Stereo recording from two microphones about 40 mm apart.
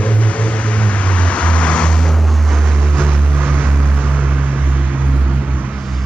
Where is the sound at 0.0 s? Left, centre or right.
Left.